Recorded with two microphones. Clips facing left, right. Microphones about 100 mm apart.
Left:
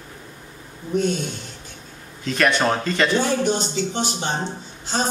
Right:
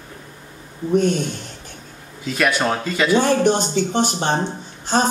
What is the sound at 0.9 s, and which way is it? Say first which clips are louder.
Speech: right 4 dB; 50° right (ahead or behind).